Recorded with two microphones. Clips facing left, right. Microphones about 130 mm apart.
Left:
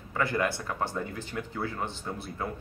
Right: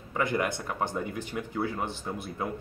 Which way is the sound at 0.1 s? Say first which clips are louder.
Even; 15° right (ahead or behind).